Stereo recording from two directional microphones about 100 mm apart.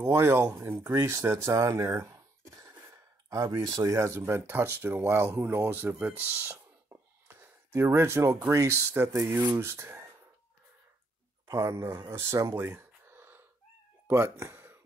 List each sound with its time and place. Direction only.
0.0 s speech: 25° right (ahead or behind)
11.4 s speech: 30° right (ahead or behind)
12.7 s a sound: 25° right (ahead or behind)
14.0 s cat: 25° right (ahead or behind)